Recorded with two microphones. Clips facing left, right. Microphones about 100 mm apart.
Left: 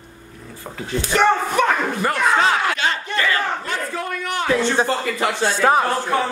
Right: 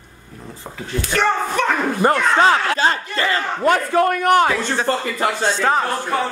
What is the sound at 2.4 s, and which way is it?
Speech, 40° right (ahead or behind).